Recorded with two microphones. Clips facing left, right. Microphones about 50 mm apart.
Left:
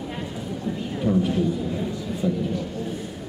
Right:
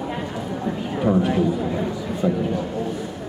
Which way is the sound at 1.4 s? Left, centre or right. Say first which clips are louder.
Right 3 dB; right.